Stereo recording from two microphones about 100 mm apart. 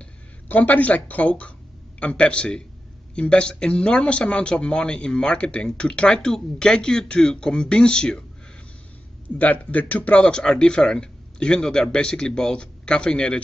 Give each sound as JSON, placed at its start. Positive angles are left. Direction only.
{"t": 0.0, "sound": "speech", "side_deg": 15}
{"t": 9.4, "sound": "speech", "side_deg": 15}